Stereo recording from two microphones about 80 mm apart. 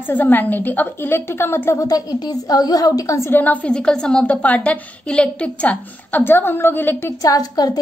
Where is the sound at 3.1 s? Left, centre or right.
Left.